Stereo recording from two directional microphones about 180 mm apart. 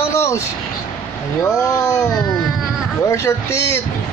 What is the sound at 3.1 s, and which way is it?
Speech, 15° left (ahead or behind).